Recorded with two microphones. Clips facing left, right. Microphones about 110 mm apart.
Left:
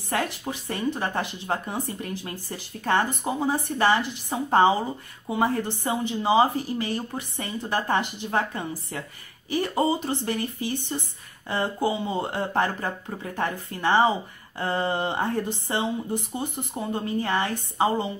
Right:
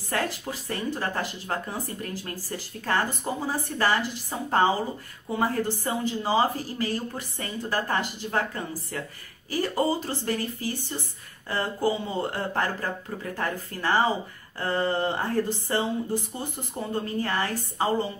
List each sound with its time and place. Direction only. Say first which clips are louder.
0.1 s speech: left 1 dB; 20° left (ahead or behind)